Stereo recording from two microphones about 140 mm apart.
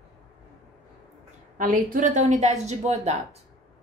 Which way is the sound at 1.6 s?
65° right (ahead or behind).